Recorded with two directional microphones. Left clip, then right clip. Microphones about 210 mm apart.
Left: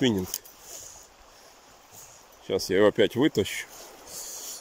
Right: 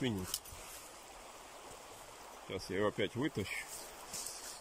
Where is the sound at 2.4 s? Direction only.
45° left (ahead or behind).